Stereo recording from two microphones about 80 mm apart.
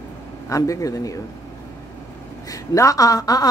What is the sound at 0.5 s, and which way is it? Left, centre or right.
Speech, left.